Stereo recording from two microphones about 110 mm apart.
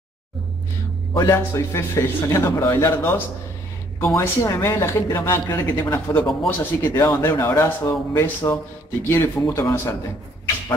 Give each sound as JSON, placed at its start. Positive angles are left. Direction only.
{"t": 1.1, "sound": "speech", "side_deg": 25}